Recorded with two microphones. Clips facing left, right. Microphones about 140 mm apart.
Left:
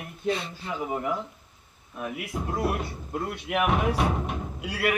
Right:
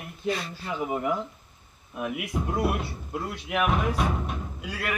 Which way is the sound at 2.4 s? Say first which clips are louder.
Even; 10° right (ahead or behind).